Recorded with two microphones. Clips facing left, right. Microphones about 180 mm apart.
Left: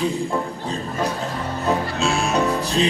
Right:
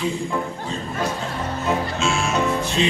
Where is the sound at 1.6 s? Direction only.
35° left (ahead or behind).